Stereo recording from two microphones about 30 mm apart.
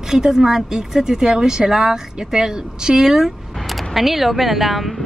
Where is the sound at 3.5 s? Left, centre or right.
Centre.